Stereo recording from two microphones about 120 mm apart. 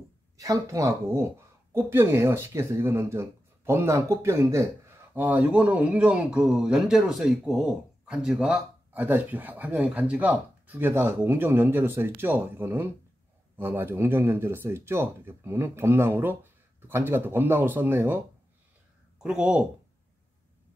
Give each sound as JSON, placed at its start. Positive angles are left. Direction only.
{"t": 0.4, "sound": "speech", "side_deg": -30}
{"t": 5.1, "sound": "a man's voice", "side_deg": -15}
{"t": 19.2, "sound": "a man's voice", "side_deg": -10}